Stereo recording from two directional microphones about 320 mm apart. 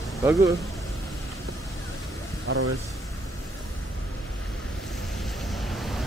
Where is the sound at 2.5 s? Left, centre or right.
Right.